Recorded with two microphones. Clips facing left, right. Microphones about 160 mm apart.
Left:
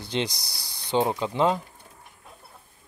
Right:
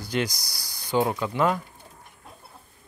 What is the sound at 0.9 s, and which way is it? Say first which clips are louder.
Speech: even; 25° left (ahead or behind).